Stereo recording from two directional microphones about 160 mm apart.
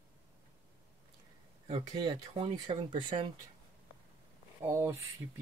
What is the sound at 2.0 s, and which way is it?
Speech, 35° right (ahead or behind).